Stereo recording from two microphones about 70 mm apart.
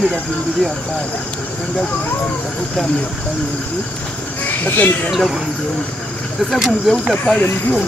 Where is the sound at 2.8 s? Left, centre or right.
Centre.